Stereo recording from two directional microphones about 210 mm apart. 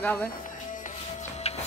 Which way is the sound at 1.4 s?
30° left (ahead or behind).